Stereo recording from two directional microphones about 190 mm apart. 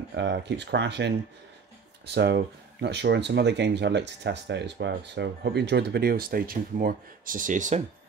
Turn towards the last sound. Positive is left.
turn(degrees=-40)  # may be behind; listen again after turning